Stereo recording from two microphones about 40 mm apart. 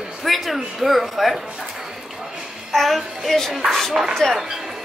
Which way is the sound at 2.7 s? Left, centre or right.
Centre.